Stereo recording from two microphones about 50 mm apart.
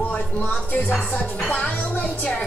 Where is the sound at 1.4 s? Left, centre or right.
Left.